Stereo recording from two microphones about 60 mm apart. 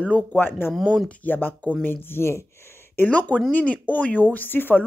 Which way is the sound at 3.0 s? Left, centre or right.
Left.